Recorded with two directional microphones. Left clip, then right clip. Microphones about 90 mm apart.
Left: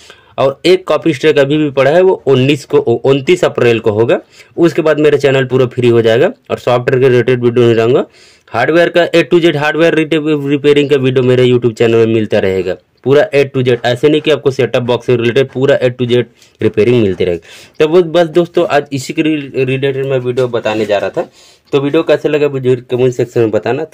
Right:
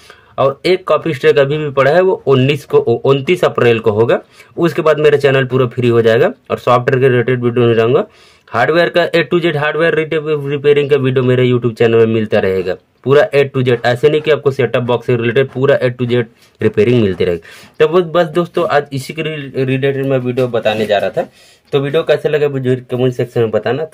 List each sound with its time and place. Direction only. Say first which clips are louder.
0.4 s speech: left 3 dB; 30° left (ahead or behind)
7.1 s speech: left 3 dB; 45° left (ahead or behind)
8.0 s speech: left 1 dB; 25° left (ahead or behind)
16.9 s speech: left 2 dB; 5° left (ahead or behind)
17.7 s speech: left 2 dB; 25° left (ahead or behind); by 23.8 s 55° left (ahead or behind)